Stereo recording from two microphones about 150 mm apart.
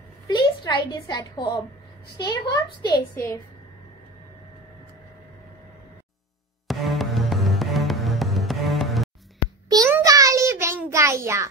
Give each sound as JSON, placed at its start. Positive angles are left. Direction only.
{"t": 0.3, "sound": "a woman's voice", "side_deg": 30}
{"t": 6.7, "sound": "music", "side_deg": 0}
{"t": 9.7, "sound": "a sound", "side_deg": -25}
{"t": 9.9, "sound": "child singing", "side_deg": -20}